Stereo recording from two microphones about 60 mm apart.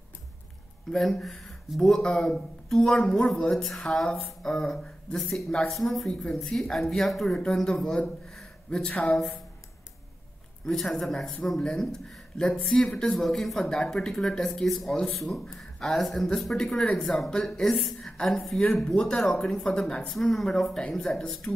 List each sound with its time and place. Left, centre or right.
0.9 s speech: centre
9.1 s speech: centre
10.6 s speech: centre
16.5 s speech: centre
20.1 s speech: centre